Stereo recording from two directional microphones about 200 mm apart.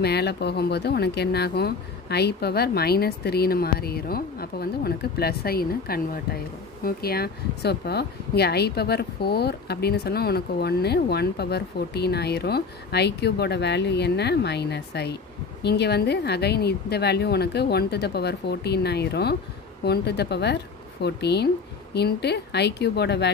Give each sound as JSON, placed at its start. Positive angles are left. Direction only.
{"t": 0.0, "sound": "speech", "side_deg": 55}